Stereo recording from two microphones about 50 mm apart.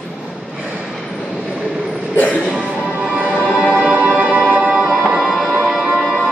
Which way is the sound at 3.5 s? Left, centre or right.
Centre.